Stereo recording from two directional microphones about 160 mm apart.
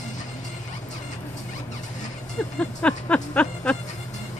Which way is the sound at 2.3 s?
5° left (ahead or behind).